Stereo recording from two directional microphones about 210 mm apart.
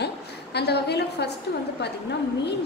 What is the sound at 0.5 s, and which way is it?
Speech, 50° left (ahead or behind).